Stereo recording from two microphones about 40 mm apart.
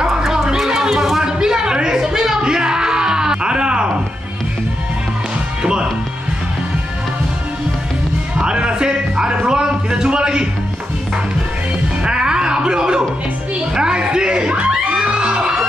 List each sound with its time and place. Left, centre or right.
0.0 s a sound: centre
5.6 s music: right
8.4 s music: right
12.0 s music: right